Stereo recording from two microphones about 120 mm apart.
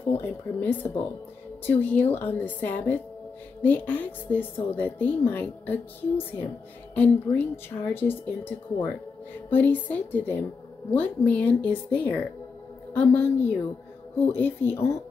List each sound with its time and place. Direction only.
0.1 s a woman's voice: 15° left (ahead or behind)